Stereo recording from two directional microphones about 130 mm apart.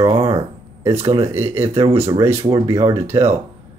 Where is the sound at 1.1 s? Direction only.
20° right (ahead or behind).